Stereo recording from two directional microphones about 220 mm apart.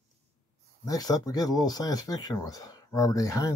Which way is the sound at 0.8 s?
15° left (ahead or behind).